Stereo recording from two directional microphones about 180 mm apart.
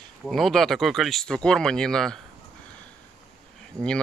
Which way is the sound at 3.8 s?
20° right (ahead or behind).